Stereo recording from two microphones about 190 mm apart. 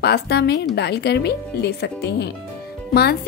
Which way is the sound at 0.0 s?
60° left (ahead or behind).